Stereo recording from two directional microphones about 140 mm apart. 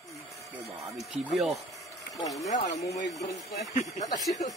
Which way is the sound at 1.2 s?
Centre (ahead or behind).